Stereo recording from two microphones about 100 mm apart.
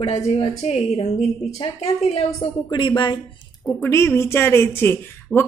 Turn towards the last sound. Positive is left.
turn(degrees=-5)  # may be behind; listen again after turning